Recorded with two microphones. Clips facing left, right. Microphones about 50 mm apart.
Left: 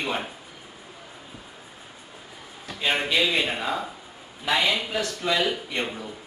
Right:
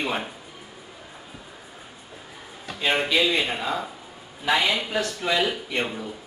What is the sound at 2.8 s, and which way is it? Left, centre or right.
A man's voice, centre.